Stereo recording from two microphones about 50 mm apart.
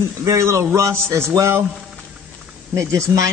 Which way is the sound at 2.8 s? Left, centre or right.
Right.